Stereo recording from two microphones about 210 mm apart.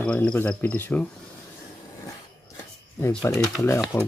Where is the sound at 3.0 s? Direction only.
15° left (ahead or behind).